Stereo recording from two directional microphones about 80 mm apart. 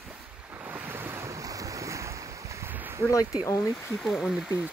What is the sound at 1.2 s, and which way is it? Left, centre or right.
Waves, right.